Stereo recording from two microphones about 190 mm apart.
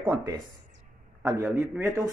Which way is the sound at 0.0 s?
20° right (ahead or behind).